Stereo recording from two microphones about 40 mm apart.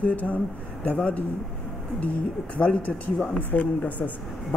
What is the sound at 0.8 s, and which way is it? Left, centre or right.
Speech, left.